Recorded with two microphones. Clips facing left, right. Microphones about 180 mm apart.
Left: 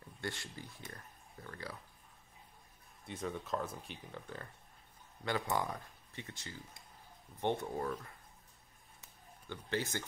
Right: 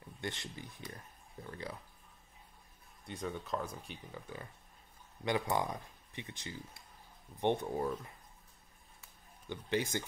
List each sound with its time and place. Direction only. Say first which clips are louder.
0.2 s speech: right 1 dB; 20° right (ahead or behind)
0.9 s a sound: right 2 dB; 20° right (ahead or behind)
3.1 s speech: even; centre (ahead or behind)
5.2 s speech: right 2 dB; 15° right (ahead or behind)
9.5 s speech: right 3 dB; 15° right (ahead or behind)